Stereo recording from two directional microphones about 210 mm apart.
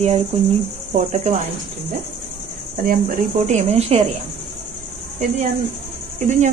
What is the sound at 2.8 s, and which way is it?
Speech, 40° right (ahead or behind).